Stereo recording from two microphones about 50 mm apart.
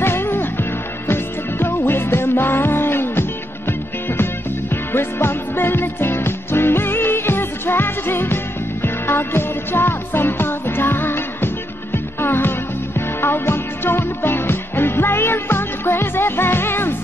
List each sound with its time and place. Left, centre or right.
0.0 s music: left
4.9 s music: left